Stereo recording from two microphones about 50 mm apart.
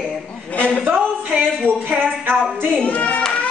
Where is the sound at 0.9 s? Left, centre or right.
Right.